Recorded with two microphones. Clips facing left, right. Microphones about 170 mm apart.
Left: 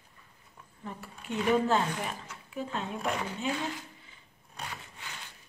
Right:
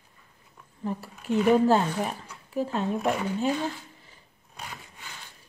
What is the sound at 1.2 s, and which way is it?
Speech, 35° right (ahead or behind).